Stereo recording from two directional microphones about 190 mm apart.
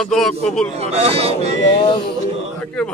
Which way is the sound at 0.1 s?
Centre (ahead or behind).